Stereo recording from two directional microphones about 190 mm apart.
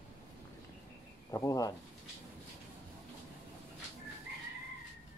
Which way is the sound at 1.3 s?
15° left (ahead or behind).